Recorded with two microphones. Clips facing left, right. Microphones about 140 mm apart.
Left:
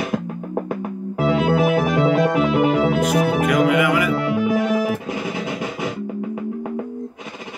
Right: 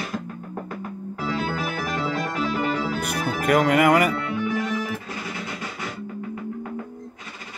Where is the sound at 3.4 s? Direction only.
50° right (ahead or behind).